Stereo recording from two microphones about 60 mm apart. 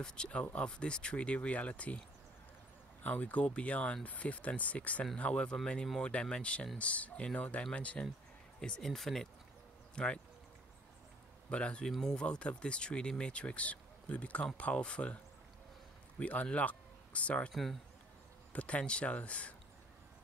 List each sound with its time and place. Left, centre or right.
0.0 s speech: centre
3.0 s speech: left; by 9.3 s centre
9.9 s speech: centre
11.5 s speech: centre
16.2 s speech: left
17.5 s speech: centre
18.5 s speech: left